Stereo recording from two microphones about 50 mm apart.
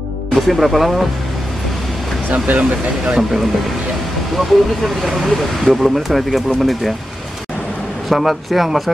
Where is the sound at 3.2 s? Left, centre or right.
Centre.